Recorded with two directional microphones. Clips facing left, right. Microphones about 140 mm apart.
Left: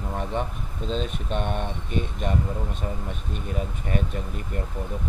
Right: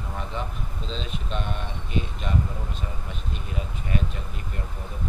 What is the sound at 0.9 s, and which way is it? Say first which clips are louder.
Speech: left 6 dB; 50° left (ahead or behind).